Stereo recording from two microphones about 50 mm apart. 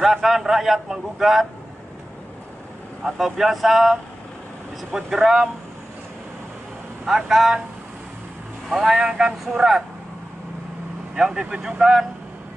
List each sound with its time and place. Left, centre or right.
0.0 s a man's voice: centre
3.0 s a man's voice: centre
7.1 s speech: centre
8.6 s speech: centre
8.9 s speech: centre
11.1 s speech: centre